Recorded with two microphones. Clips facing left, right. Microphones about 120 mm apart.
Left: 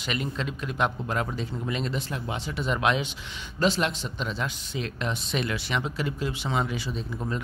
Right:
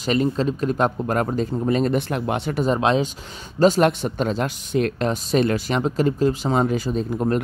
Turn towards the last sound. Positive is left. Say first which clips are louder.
# right 10 dB
turn(degrees=-45)  # may be behind; listen again after turning